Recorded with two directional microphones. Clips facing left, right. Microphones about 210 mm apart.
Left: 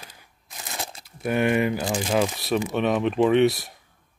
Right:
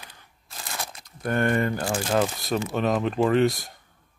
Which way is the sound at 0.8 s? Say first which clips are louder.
Left 3 dB; 25° left (ahead or behind).